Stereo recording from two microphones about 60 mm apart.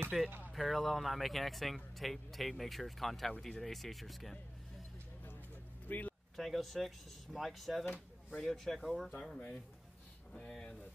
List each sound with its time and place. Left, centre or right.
0.1 s speech: centre
5.9 s a sound: left
6.3 s speech: centre
10.6 s speech: centre